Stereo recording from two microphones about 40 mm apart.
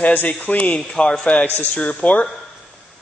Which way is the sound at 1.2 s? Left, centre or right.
Left.